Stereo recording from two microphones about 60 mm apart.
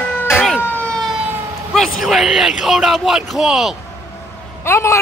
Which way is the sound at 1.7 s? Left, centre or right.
Centre.